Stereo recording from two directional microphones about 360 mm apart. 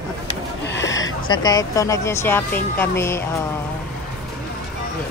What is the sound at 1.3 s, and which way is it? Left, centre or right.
Speech, centre.